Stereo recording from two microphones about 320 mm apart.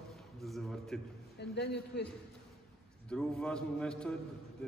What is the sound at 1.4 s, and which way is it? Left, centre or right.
Speech, left.